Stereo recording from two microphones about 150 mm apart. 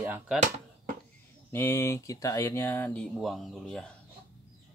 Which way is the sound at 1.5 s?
15° left (ahead or behind).